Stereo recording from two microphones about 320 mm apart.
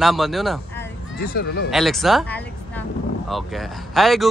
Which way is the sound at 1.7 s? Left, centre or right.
Centre.